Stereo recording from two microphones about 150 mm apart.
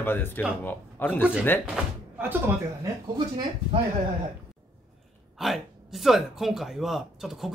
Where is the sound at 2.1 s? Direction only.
15° right (ahead or behind).